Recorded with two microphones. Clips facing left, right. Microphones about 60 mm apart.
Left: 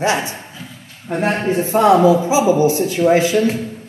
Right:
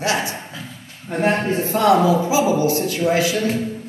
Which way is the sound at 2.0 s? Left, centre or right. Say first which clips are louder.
Left 4 dB; left.